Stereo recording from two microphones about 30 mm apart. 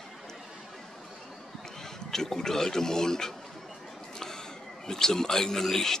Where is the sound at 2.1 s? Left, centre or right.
Centre.